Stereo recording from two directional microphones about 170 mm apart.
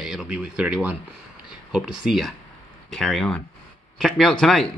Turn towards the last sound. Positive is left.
turn(degrees=0)  # may be behind; listen again after turning